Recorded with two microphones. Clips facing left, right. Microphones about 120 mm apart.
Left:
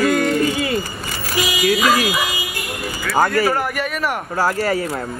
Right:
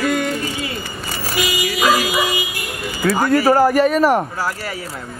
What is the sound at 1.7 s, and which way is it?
Dog, 25° right (ahead or behind).